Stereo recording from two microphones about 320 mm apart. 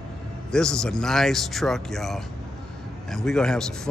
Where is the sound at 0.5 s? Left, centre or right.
Centre.